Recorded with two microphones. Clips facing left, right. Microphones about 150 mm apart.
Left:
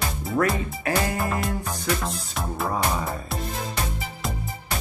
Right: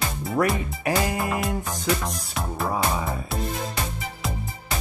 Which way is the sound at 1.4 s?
Centre (ahead or behind).